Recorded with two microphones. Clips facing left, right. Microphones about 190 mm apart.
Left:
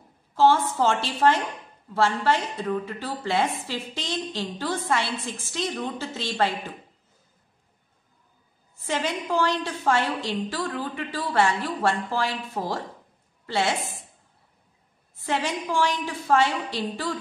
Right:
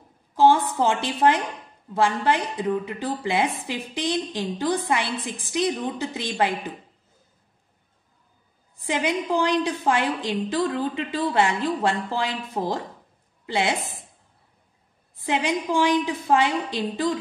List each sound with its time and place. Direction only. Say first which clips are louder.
0.3 s a woman's voice: right 2 dB; 15° right (ahead or behind)
8.7 s a woman's voice: right 3 dB; 15° right (ahead or behind)
13.5 s a woman's voice: right 1 dB; 15° right (ahead or behind)
15.1 s a woman's voice: right 3 dB; 15° right (ahead or behind)